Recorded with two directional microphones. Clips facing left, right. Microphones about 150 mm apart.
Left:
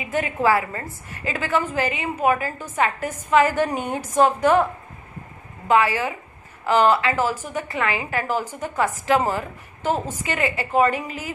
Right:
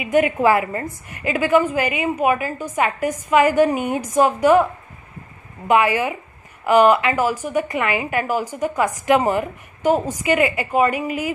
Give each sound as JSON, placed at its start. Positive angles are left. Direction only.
{"t": 0.0, "sound": "a woman's voice", "side_deg": -15}
{"t": 5.7, "sound": "a woman's voice", "side_deg": -15}